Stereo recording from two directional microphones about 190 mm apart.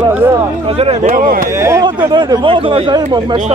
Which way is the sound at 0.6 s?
30° right (ahead or behind).